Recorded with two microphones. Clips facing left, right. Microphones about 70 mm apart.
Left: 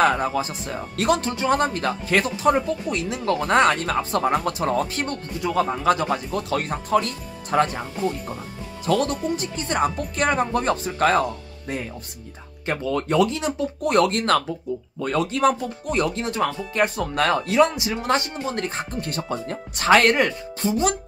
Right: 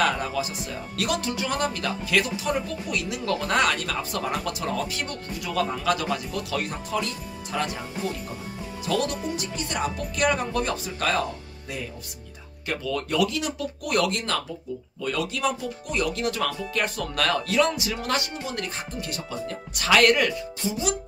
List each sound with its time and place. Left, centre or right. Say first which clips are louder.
0.0 s speech: left 5 dB; left
8.8 s speech: left 5 dB; left
20.6 s speech: left 7 dB; left